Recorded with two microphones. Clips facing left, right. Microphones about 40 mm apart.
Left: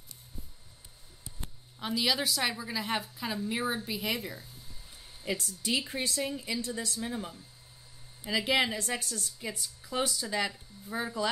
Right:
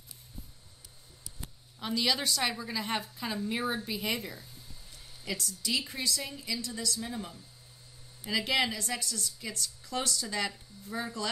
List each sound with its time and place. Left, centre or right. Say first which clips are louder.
1.8 s a woman's voice: left 1 dB; centre
4.9 s a sound: left 3 dB; left
5.4 s speech: right 2 dB; left
7.0 s speech: left 2 dB; centre
8.7 s a woman's voice: left 1 dB; left
9.4 s speech: left 1 dB; centre